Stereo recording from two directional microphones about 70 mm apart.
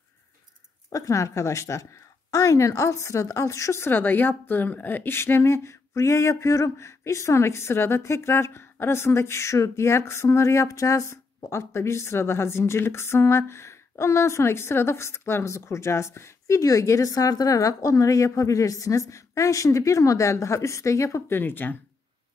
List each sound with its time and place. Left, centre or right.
0.8 s a woman's voice: left
21.4 s speech: left